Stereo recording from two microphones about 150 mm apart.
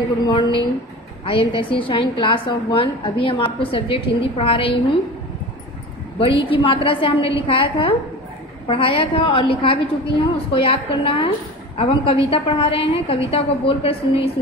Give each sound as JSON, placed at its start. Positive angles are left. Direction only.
{"t": 0.3, "sound": "a woman's voice", "side_deg": 35}
{"t": 6.1, "sound": "a woman's voice", "side_deg": 35}